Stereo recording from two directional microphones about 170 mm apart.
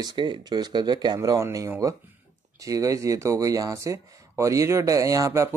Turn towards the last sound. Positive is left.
turn(degrees=-20)  # may be behind; listen again after turning